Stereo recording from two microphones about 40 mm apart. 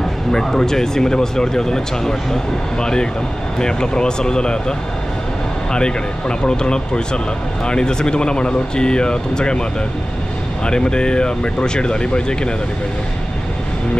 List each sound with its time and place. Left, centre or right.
0.3 s speech: centre